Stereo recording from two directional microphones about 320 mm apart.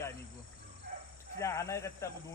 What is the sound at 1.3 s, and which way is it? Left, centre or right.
Speech, centre.